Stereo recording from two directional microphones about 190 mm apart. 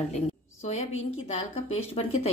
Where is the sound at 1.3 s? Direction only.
35° left (ahead or behind).